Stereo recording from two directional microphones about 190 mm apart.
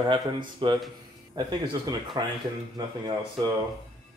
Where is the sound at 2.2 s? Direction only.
20° right (ahead or behind).